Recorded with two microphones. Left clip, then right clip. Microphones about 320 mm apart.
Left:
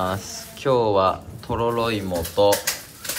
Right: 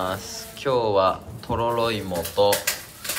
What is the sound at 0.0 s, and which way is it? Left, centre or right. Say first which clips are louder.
Speech: left 2 dB; centre.